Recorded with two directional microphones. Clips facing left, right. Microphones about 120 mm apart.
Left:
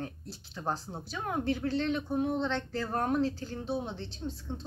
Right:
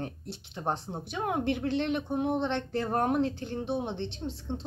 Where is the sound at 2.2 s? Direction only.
20° right (ahead or behind).